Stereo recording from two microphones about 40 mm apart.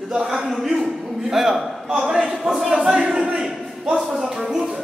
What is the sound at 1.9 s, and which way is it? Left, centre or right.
Speech, right.